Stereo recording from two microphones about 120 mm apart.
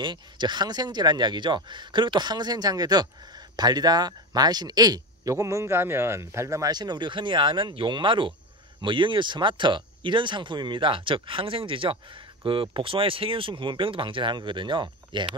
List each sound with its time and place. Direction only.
0.0 s speech: 40° right (ahead or behind)